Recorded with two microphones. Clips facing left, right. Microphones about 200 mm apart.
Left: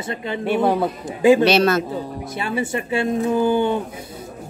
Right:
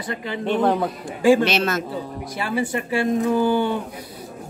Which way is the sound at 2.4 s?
25° left (ahead or behind).